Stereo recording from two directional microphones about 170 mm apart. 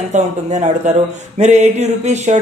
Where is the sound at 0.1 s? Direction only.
45° right (ahead or behind).